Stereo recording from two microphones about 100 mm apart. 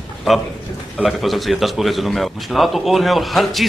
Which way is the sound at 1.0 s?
Centre (ahead or behind).